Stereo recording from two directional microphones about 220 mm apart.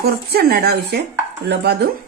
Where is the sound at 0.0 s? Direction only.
45° right (ahead or behind).